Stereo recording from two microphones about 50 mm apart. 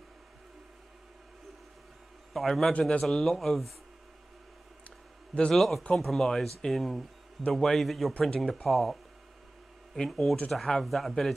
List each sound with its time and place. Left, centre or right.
2.3 s speech: centre
4.8 s a sound: left
5.5 s speech: centre
10.0 s speech: centre